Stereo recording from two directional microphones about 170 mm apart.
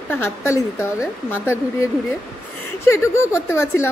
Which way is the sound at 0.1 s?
15° left (ahead or behind).